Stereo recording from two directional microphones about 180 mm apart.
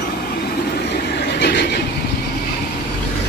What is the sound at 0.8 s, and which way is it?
Vehicle, 70° left (ahead or behind).